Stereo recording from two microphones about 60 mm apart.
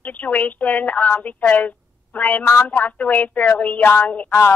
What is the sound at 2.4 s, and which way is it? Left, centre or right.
Speech, left.